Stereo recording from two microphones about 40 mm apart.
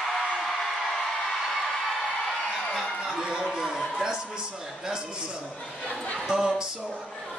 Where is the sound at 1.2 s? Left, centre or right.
Centre.